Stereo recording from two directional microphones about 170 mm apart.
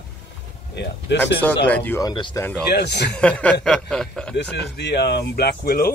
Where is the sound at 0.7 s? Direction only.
90° left.